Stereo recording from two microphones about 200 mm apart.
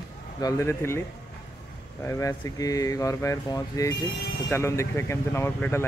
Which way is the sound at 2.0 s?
15° left (ahead or behind).